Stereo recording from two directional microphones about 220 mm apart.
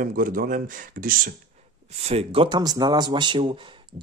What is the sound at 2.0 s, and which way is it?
Speech, 25° right (ahead or behind).